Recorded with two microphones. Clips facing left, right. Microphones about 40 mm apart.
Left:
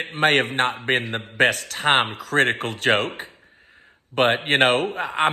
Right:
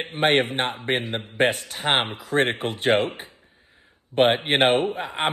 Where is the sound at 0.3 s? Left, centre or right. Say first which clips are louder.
Left 1 dB; left.